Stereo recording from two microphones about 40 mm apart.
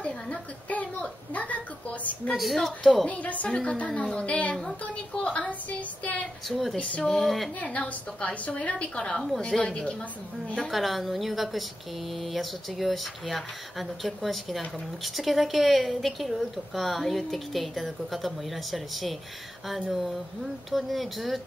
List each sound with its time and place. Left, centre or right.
0.0 s a woman's voice: left
1.3 s a sound: left
2.3 s a woman's voice: centre
2.6 s speech: centre
3.1 s speech: left
4.0 s a woman's voice: centre
4.3 s a woman's voice: left
5.5 s speech: left
6.5 s speech: centre
6.8 s speech: left
7.1 s a woman's voice: centre
8.2 s a woman's voice: left
10.7 s a woman's voice: centre